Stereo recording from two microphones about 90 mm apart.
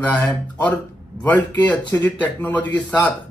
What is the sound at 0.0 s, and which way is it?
Speech, 15° left (ahead or behind).